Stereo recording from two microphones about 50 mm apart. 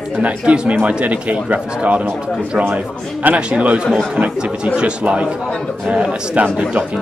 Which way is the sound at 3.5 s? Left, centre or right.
Right.